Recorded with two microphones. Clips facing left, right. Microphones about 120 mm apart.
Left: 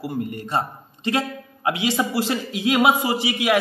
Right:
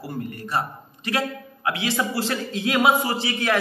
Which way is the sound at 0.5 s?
20° left (ahead or behind).